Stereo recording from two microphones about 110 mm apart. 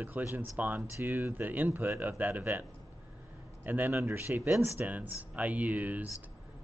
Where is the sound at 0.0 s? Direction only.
15° right (ahead or behind).